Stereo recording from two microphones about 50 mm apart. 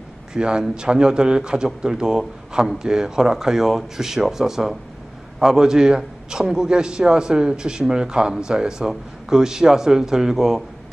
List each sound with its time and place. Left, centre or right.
0.3 s a man's voice: centre